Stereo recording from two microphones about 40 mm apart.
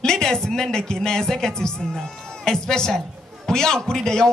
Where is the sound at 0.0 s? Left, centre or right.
Centre.